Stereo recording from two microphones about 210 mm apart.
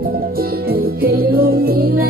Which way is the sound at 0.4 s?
45° right (ahead or behind).